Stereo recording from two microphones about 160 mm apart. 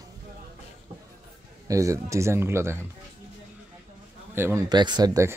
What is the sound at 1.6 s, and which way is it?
Speech, 20° right (ahead or behind).